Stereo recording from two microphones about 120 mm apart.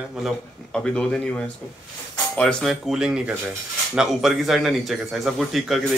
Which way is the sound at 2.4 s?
5° left (ahead or behind).